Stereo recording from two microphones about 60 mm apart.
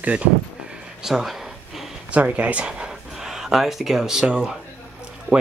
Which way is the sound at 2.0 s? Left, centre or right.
Right.